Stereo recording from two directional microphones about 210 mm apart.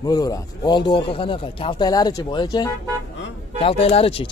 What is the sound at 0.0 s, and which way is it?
Speech, 15° left (ahead or behind).